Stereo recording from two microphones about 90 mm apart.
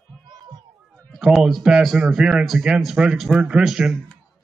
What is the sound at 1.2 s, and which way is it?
A man's voice, 5° right (ahead or behind).